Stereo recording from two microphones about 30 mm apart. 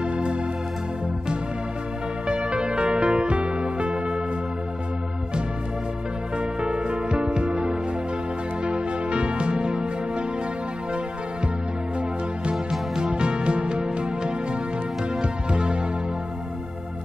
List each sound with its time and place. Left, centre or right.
0.0 s organ: right
2.2 s music: right
6.3 s music: right
13.1 s music: right
15.5 s music: right